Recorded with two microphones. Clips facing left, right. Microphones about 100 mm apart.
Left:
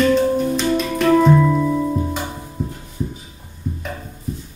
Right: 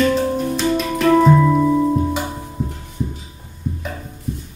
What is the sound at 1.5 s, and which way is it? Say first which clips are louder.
Music: right 3 dB; 15° right (ahead or behind).